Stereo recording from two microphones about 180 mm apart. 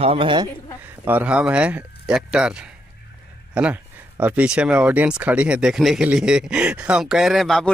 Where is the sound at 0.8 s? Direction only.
10° right (ahead or behind).